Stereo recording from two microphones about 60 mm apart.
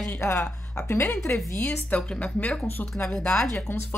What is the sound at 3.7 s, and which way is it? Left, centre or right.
Speech, left.